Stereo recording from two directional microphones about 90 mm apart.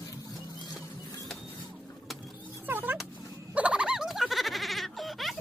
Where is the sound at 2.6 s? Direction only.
20° right (ahead or behind).